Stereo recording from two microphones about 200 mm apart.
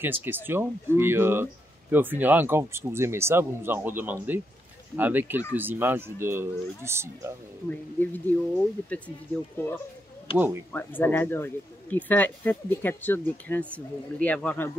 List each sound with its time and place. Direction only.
0.0 s speech: 10° right (ahead or behind)
8.0 s speech: 10° left (ahead or behind)
10.3 s speech: 10° right (ahead or behind)
10.7 s speech: 10° left (ahead or behind)